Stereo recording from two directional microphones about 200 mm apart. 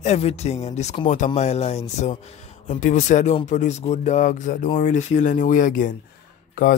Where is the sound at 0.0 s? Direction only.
35° left (ahead or behind).